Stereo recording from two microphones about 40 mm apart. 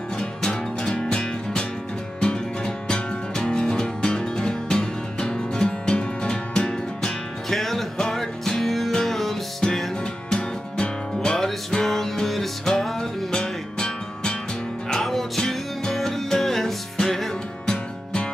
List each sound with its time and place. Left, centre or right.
0.2 s music: centre
14.9 s music: centre